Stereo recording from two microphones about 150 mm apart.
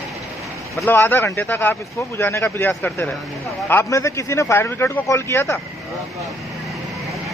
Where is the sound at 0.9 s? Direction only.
15° left (ahead or behind).